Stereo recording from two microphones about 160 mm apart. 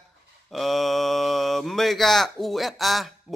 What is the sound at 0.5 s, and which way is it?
Mantra, centre (ahead or behind).